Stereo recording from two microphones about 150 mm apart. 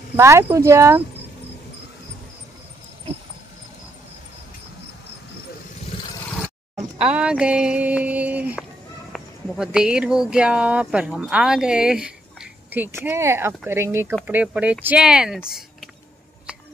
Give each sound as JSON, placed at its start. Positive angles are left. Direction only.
{"t": 0.1, "sound": "speech", "side_deg": -20}
{"t": 7.0, "sound": "speech", "side_deg": -5}